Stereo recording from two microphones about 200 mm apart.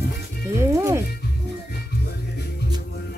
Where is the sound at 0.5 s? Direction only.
15° right (ahead or behind).